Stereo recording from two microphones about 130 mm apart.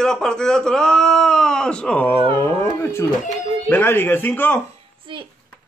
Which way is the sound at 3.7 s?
15° left (ahead or behind).